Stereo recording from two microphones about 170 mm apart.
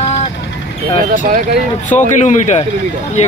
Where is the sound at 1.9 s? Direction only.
45° left (ahead or behind).